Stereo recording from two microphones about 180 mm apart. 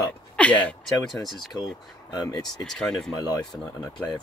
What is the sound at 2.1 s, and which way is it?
Speech, 20° left (ahead or behind).